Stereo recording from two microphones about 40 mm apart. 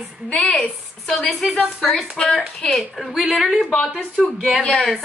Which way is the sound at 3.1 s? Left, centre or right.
Right.